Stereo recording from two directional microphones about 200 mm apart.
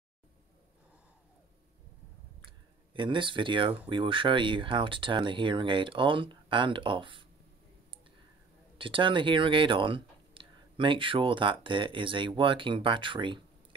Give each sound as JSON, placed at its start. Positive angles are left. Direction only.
{"t": 2.4, "sound": "speech", "side_deg": -25}
{"t": 8.7, "sound": "speech", "side_deg": -25}